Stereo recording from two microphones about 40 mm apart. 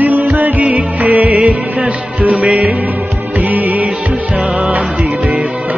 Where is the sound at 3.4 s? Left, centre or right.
Right.